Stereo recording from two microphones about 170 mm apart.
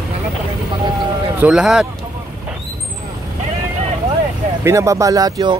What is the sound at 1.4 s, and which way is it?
Speech, 5° right (ahead or behind).